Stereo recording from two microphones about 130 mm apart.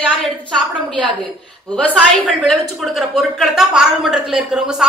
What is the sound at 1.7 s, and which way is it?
A woman's voice, 10° left (ahead or behind).